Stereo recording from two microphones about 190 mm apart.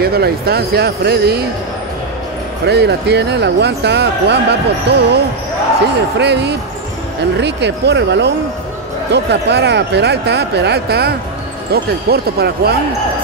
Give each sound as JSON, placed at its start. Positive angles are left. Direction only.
{"t": 0.0, "sound": "speech", "side_deg": -55}
{"t": 2.6, "sound": "speech", "side_deg": -60}